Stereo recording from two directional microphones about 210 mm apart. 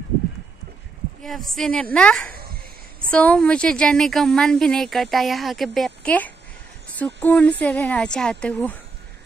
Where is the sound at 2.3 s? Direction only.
45° right (ahead or behind).